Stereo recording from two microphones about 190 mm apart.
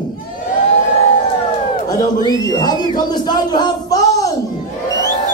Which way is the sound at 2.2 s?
20° left (ahead or behind).